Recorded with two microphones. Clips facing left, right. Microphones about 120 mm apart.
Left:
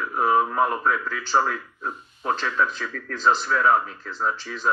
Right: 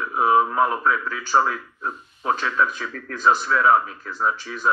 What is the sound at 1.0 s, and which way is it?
Speech, 50° right (ahead or behind).